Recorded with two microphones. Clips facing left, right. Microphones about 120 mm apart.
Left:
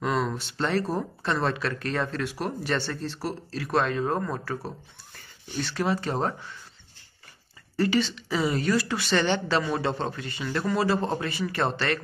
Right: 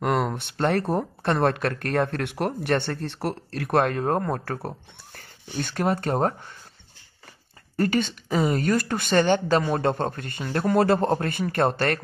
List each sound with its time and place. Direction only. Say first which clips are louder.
0.0 s a woman's voice: right 3 dB; 60° right (ahead or behind)
7.7 s a woman's voice: right 1 dB; 50° right (ahead or behind)